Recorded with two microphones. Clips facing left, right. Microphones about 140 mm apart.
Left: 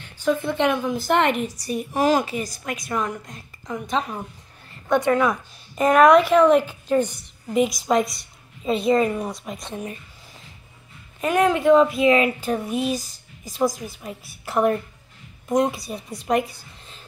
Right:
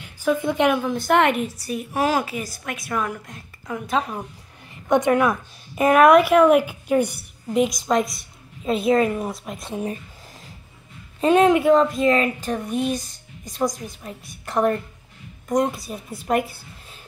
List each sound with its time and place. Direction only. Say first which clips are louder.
0.0 s a woman's voice: right 1 dB; 10° right (ahead or behind)
4.8 s a woman's voice: right 1 dB; 20° right (ahead or behind)
5.2 s a woman's voice: right 1 dB; 5° right (ahead or behind)
11.1 s a woman's voice: right 4 dB; 25° right (ahead or behind)
11.5 s a woman's voice: left 1 dB; 5° right (ahead or behind)